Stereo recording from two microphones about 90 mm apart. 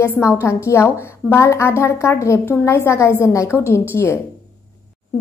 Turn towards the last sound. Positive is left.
turn(degrees=30)  # may be behind; listen again after turning